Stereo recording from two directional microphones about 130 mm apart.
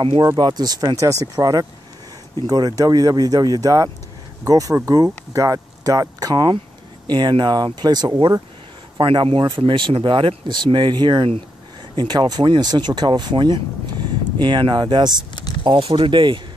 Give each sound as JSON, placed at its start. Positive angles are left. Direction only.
{"t": 0.0, "sound": "speech", "side_deg": -40}
{"t": 8.9, "sound": "speech", "side_deg": -45}